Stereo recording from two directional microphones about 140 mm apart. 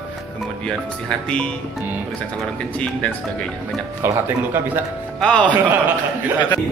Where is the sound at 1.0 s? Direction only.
5° left (ahead or behind).